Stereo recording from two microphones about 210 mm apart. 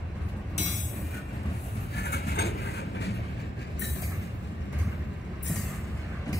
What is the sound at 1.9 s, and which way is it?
Train, 50° left (ahead or behind).